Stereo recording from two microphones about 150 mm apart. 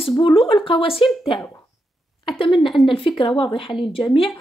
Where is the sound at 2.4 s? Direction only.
35° left (ahead or behind).